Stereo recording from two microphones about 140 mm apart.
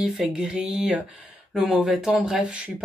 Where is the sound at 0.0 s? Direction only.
5° right (ahead or behind).